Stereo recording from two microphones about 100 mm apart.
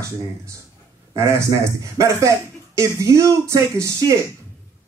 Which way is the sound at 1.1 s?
30° right (ahead or behind).